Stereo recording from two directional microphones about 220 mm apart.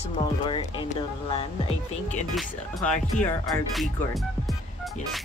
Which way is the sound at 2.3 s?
Centre (ahead or behind).